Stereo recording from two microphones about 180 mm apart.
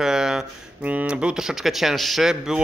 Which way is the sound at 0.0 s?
5° right (ahead or behind).